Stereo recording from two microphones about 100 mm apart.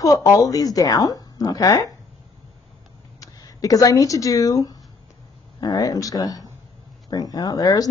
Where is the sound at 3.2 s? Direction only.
35° left (ahead or behind).